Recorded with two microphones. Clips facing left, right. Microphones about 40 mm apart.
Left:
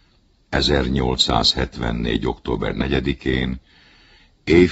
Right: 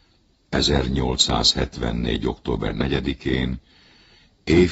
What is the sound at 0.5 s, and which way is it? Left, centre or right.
Speech, centre.